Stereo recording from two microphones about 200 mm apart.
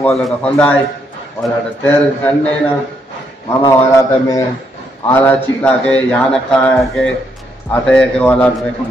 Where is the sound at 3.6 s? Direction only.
15° left (ahead or behind).